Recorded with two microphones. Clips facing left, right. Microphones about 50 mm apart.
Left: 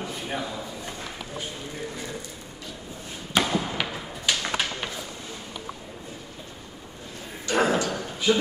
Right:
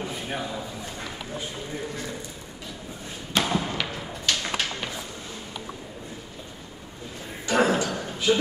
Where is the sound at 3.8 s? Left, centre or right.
Centre.